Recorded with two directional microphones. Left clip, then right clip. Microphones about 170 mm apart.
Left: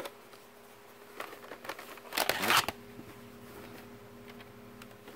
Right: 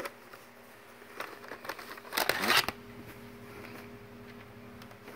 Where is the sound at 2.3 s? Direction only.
5° left (ahead or behind).